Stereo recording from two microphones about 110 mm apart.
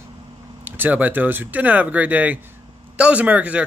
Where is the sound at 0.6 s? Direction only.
15° right (ahead or behind).